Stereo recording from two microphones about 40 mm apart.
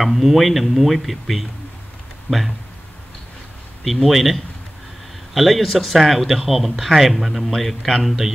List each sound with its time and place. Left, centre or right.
0.0 s speech: centre
3.8 s speech: centre